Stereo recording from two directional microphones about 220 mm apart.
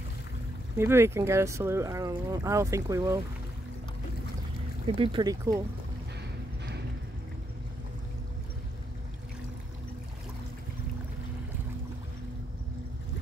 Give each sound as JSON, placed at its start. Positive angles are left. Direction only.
{"t": 0.7, "sound": "speech", "side_deg": -10}
{"t": 4.9, "sound": "speech", "side_deg": -25}